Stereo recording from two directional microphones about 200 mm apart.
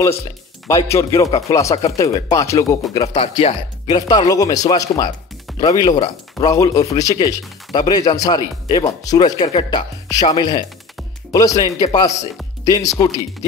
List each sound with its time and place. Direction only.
0.7 s a man's voice: 15° left (ahead or behind)